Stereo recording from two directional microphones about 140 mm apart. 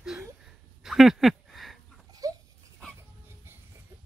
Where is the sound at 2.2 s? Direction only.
25° right (ahead or behind).